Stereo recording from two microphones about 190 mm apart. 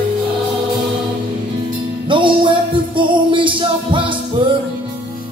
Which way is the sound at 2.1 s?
25° right (ahead or behind).